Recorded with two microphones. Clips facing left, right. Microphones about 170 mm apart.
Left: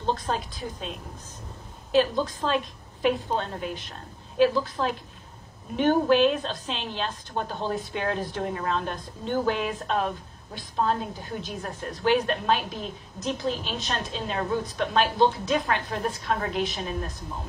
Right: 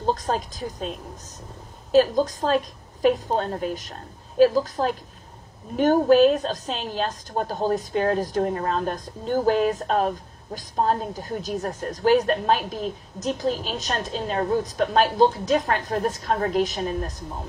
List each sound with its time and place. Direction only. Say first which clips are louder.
0.0 s a woman's voice: right 3 dB; 40° right (ahead or behind)